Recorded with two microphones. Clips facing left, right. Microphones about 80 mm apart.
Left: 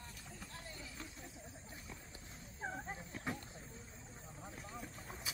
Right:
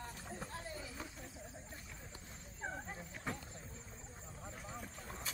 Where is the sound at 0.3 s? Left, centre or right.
Right.